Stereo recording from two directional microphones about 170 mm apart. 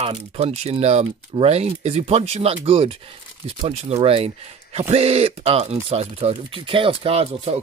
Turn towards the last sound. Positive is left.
turn(degrees=-35)  # may be behind; listen again after turning